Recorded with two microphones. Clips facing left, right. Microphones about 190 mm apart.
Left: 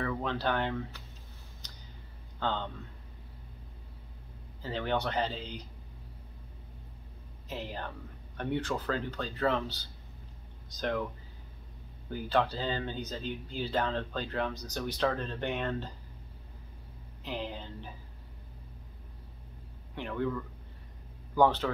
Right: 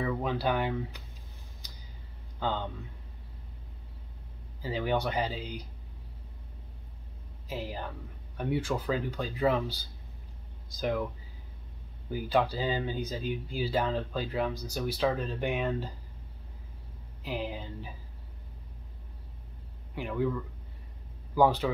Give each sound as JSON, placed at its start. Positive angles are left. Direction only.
{"t": 0.0, "sound": "speech", "side_deg": -10}
{"t": 1.6, "sound": "a sound", "side_deg": -10}
{"t": 2.4, "sound": "speech", "side_deg": -10}
{"t": 4.6, "sound": "speech", "side_deg": -10}
{"t": 7.4, "sound": "speech", "side_deg": -10}
{"t": 12.1, "sound": "speech", "side_deg": -10}
{"t": 17.2, "sound": "speech", "side_deg": -10}
{"t": 20.0, "sound": "speech", "side_deg": -5}
{"t": 21.4, "sound": "speech", "side_deg": -10}